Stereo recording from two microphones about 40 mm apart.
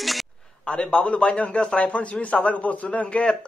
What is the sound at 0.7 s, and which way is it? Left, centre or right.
A man's voice, left.